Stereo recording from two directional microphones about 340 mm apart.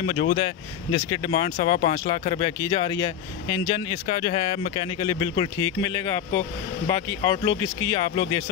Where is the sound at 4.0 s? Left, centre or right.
Centre.